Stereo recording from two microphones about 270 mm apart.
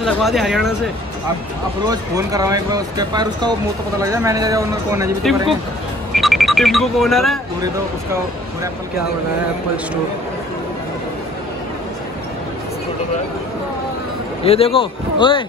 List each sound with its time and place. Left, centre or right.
0.0 s speech: centre
1.9 s speech: centre
6.1 s speech: centre
14.4 s a man's voice: left